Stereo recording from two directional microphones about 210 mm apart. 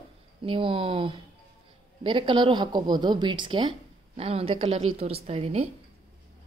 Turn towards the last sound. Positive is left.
turn(degrees=-30)  # may be behind; listen again after turning